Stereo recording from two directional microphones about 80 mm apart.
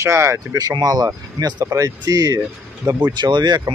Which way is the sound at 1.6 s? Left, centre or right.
Right.